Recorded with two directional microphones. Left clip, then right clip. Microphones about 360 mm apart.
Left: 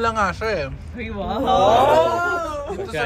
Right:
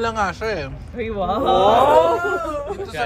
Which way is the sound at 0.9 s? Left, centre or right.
Right.